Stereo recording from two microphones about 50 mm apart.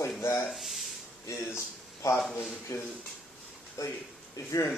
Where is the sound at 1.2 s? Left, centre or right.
Left.